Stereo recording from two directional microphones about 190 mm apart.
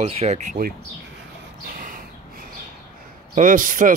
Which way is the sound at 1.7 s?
45° right (ahead or behind).